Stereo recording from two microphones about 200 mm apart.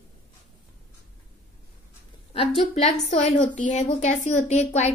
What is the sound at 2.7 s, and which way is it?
A woman's voice, 30° left (ahead or behind).